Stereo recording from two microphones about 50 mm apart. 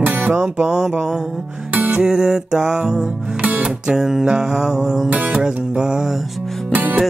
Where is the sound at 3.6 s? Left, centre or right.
Centre.